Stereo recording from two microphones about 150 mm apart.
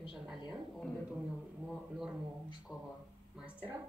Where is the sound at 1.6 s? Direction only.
5° right (ahead or behind).